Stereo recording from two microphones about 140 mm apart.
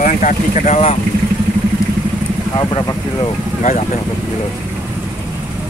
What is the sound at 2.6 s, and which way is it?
Speech, 30° left (ahead or behind).